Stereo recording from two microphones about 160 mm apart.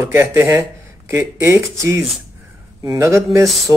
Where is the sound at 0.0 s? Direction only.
15° right (ahead or behind).